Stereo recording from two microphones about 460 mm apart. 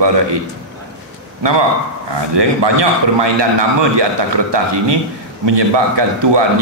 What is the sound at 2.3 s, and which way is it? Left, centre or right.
A man's voice, right.